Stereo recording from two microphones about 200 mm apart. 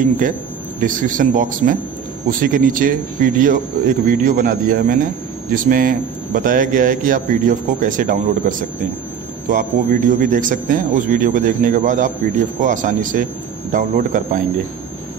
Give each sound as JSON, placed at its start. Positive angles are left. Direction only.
{"t": 0.7, "sound": "a man's voice", "side_deg": -40}